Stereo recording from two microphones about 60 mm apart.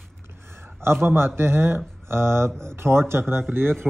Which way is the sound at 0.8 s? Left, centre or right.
Right.